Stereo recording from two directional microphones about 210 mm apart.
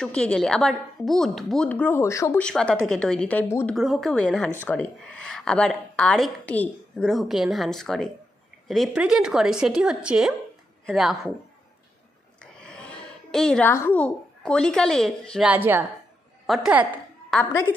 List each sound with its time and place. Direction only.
0.0 s speech: 5° left (ahead or behind)
3.7 s speech: centre (ahead or behind)
12.5 s a woman's voice: 5° left (ahead or behind)
17.3 s a woman's voice: 10° left (ahead or behind)